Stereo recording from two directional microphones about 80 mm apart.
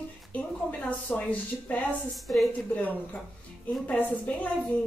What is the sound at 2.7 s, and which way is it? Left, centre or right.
A woman's voice, centre.